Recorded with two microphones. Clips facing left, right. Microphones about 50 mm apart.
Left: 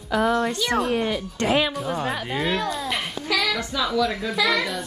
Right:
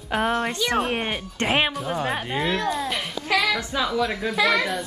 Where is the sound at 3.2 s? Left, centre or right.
Right.